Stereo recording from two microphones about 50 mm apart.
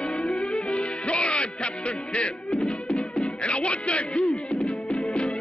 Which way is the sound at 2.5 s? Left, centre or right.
Centre.